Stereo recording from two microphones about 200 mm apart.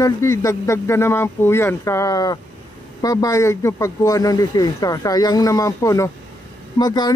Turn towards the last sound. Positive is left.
turn(degrees=20)  # may be behind; listen again after turning